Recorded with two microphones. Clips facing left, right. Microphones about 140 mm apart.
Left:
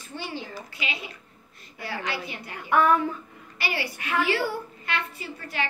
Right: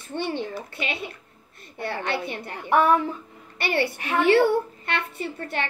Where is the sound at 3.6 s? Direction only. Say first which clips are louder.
Right 7 dB; 55° right (ahead or behind).